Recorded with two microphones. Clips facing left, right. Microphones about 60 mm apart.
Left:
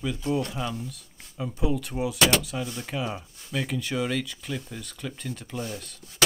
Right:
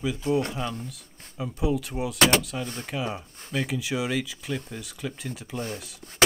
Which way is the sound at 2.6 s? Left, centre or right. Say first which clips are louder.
Even; right.